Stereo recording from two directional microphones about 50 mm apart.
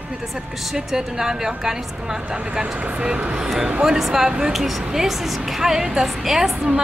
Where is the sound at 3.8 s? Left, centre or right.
Centre.